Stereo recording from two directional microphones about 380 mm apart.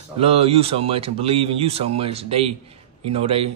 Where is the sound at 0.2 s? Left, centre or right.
Centre.